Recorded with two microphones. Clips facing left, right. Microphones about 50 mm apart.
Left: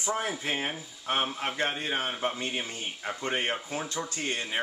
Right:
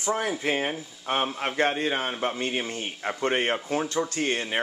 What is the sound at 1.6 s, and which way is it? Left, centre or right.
Speech, right.